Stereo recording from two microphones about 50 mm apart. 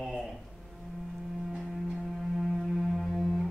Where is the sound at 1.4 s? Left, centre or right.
Centre.